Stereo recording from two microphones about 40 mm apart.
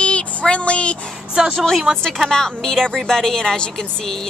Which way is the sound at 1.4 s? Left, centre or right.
Right.